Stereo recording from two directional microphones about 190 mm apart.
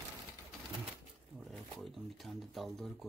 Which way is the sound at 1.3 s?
Centre (ahead or behind).